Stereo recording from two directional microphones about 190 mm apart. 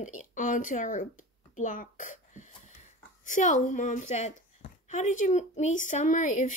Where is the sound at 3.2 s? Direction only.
40° left (ahead or behind).